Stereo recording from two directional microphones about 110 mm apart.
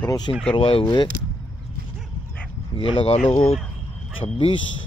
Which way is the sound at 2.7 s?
55° left (ahead or behind).